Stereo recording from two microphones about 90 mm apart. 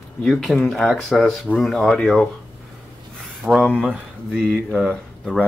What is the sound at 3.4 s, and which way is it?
Speech, 20° right (ahead or behind).